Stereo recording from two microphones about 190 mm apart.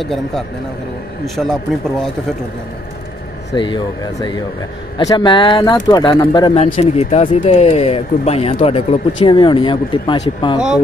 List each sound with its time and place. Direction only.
0.0 s speech: centre (ahead or behind)
3.5 s speech: 25° left (ahead or behind)